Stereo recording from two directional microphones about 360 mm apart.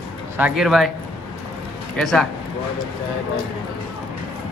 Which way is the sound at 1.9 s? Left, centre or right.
Centre.